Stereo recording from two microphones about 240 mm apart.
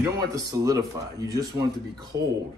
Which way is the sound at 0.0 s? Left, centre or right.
Centre.